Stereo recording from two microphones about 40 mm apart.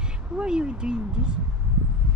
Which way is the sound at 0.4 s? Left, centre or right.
Right.